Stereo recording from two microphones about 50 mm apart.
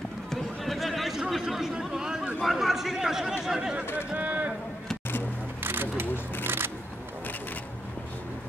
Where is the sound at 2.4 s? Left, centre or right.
Centre.